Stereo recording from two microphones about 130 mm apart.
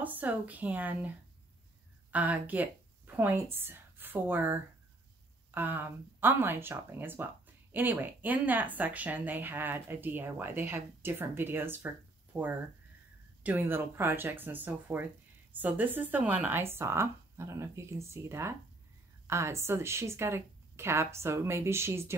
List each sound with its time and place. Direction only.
0.0 s a woman's voice: 15° right (ahead or behind)